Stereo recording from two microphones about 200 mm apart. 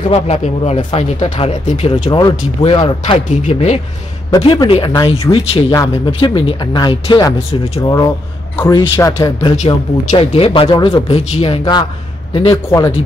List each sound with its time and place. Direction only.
0.1 s speech: 30° left (ahead or behind)
2.0 s speech: 20° left (ahead or behind)
9.6 s speech: 30° left (ahead or behind)